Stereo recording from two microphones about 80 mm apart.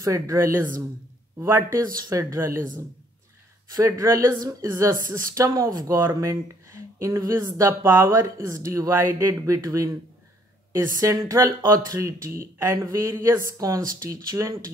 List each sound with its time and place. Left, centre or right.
0.0 s speech: right
2.0 s speech: right
3.7 s speech: right
4.3 s a woman's voice: right
4.7 s speech: right
8.2 s speech: right
12.7 s speech: right
13.1 s speech: right
13.6 s speech: right